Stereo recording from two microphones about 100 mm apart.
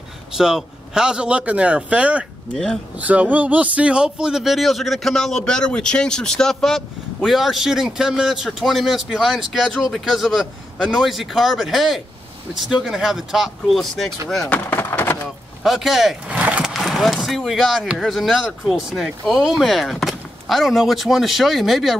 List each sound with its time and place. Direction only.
0.3 s a man's voice: 5° right (ahead or behind)
2.5 s speech: 5° left (ahead or behind)
3.0 s speech: 15° right (ahead or behind); by 14.1 s centre (ahead or behind)
14.5 s a sound: 20° left (ahead or behind)
15.6 s a sound: centre (ahead or behind)
16.7 s speech: centre (ahead or behind)